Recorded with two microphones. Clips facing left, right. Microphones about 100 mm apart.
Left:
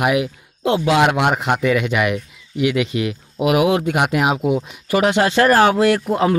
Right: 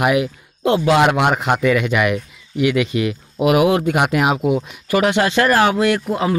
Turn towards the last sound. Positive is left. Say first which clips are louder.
# left 2 dB
turn(degrees=40)  # may be behind; listen again after turning